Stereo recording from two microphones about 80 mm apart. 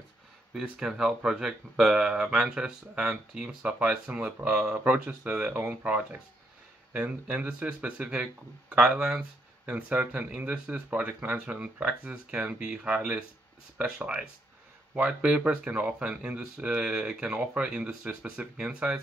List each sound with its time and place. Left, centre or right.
0.5 s speech: centre